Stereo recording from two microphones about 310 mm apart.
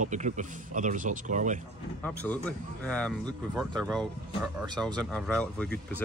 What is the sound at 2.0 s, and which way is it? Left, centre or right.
Speech, centre.